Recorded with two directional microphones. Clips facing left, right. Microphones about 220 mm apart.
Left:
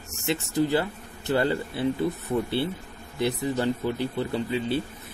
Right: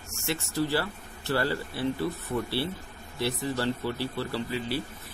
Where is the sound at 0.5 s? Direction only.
20° left (ahead or behind).